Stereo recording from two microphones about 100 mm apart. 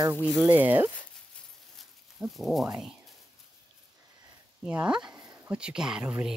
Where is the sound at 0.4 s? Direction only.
15° right (ahead or behind).